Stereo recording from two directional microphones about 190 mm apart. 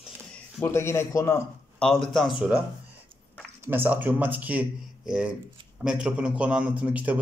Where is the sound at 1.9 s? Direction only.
Centre (ahead or behind).